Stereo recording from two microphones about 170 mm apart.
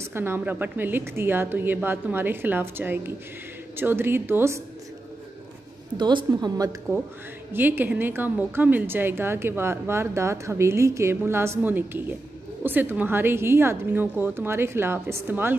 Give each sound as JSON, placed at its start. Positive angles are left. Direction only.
{"t": 0.0, "sound": "a woman's voice", "side_deg": -15}
{"t": 5.9, "sound": "a woman's voice", "side_deg": -25}
{"t": 7.5, "sound": "a woman's voice", "side_deg": -10}